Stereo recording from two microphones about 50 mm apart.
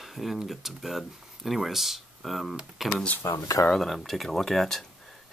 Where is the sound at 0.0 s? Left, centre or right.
Centre.